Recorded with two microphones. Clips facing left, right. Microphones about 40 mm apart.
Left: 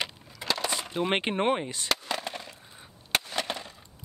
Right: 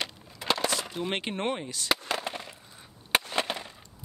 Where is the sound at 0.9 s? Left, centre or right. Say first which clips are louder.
Left 5 dB; left.